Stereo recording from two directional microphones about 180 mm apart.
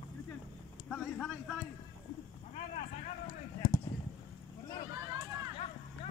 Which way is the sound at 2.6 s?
40° left (ahead or behind).